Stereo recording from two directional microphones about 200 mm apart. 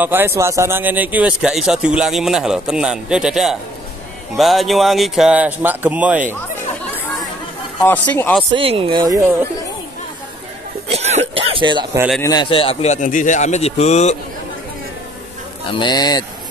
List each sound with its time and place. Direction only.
0.0 s speech: 10° right (ahead or behind)
7.8 s speech: 10° left (ahead or behind)
8.5 s speech: 25° right (ahead or behind)
10.9 s throat clearing: 30° right (ahead or behind)
12.2 s a man's voice: 20° left (ahead or behind)
15.7 s speech: 20° left (ahead or behind)